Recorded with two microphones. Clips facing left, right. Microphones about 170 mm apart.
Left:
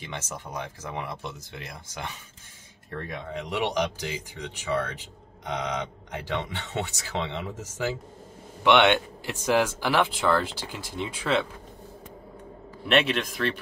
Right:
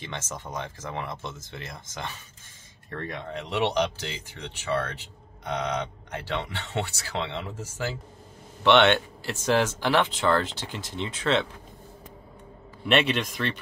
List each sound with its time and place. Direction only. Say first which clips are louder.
0.0 s speech: even; 15° left (ahead or behind)
12.8 s a man's voice: even; centre (ahead or behind)